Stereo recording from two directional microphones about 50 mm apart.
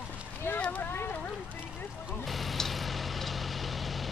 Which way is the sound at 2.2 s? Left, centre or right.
Centre.